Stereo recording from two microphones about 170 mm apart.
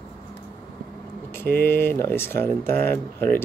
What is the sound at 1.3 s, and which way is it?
Speech, 15° left (ahead or behind).